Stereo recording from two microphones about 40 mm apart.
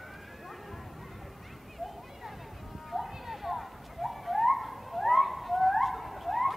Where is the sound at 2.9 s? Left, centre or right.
Centre.